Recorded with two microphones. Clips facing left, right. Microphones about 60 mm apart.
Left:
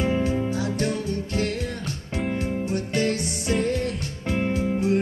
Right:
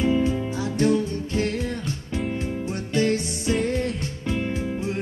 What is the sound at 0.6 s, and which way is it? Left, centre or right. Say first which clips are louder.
Music: right 4 dB; right.